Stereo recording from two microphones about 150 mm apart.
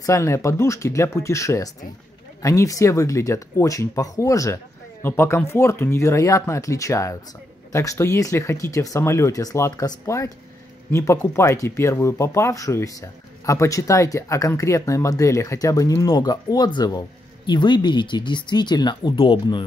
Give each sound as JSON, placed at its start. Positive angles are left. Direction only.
{"t": 0.0, "sound": "speech", "side_deg": 20}